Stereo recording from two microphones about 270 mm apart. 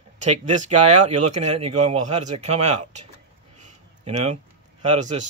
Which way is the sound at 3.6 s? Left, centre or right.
Right.